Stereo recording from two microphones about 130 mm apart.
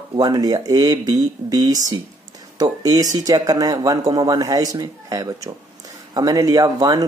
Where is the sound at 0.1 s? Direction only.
30° right (ahead or behind).